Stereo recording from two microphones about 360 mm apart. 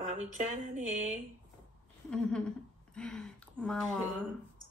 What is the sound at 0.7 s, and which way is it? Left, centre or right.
Mantra, centre.